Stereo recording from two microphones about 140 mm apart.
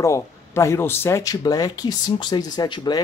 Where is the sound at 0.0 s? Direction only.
20° left (ahead or behind).